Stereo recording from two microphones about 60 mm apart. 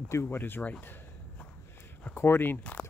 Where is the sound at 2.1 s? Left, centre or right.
Left.